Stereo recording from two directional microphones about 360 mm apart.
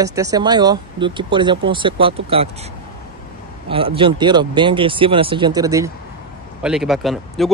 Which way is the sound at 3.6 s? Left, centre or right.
Centre.